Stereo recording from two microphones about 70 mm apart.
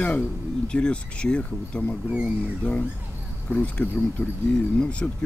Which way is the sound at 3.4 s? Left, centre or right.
Centre.